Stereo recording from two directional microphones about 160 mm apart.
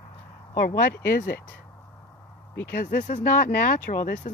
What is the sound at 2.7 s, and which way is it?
Speech, 85° left.